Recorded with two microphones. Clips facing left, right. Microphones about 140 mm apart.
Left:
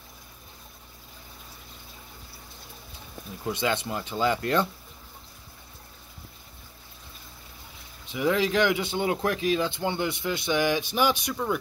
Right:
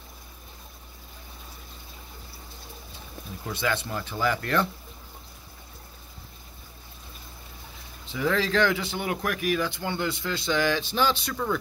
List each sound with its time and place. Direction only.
3.4 s speech: 20° left (ahead or behind)
8.1 s speech: 15° left (ahead or behind)